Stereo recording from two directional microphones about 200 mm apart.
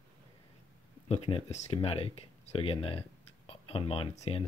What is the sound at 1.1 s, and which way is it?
Speech, 35° left (ahead or behind).